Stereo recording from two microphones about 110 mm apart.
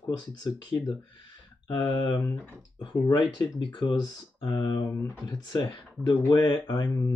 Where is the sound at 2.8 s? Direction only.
45° left (ahead or behind).